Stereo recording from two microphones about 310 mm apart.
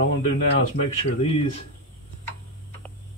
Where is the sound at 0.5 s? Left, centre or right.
Left.